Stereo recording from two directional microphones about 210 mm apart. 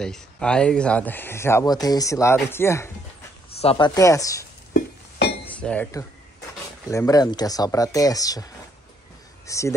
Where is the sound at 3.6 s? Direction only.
25° left (ahead or behind).